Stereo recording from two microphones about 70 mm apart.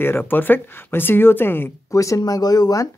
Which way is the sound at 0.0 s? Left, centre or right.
Left.